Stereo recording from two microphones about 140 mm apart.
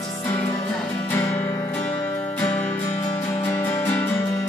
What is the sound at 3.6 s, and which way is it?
Music, 15° left (ahead or behind).